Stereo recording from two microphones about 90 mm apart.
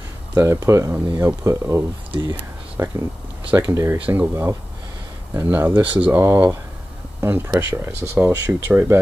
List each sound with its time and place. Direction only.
0.3 s speech: 30° right (ahead or behind)
4.0 s speech: 20° right (ahead or behind)
6.2 s speech: 30° right (ahead or behind)